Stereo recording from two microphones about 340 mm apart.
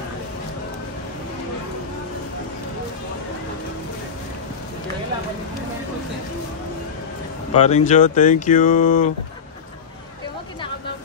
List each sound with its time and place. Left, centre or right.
7.5 s speech: centre